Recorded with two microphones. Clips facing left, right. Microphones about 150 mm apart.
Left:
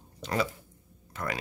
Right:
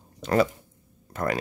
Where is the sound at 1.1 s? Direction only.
45° right (ahead or behind).